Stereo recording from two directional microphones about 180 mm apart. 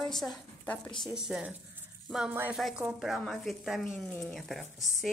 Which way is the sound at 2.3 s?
10° right (ahead or behind).